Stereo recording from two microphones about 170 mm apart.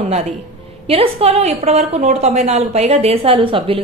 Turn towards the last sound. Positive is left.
turn(degrees=-30)  # may be behind; listen again after turning